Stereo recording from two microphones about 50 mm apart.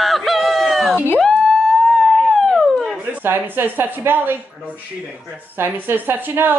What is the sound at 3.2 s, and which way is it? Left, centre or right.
A woman's voice, right.